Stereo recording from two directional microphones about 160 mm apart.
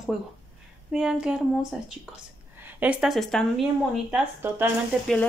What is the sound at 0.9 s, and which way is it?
Speech, 5° right (ahead or behind).